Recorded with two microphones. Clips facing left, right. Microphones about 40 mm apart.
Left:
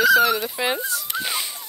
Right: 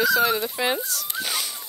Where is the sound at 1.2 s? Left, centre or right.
Left.